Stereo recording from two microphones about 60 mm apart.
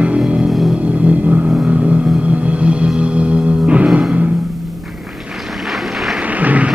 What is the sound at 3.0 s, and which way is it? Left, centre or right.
Music, centre.